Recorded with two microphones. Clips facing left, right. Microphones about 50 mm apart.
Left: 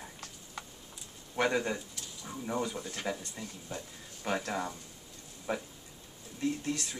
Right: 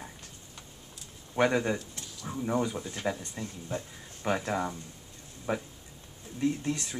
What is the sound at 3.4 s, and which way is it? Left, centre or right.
Speech, right.